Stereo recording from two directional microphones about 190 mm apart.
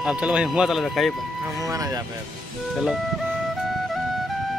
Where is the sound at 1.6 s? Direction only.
20° right (ahead or behind).